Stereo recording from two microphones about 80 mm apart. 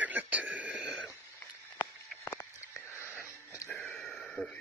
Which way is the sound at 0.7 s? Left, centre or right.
Centre.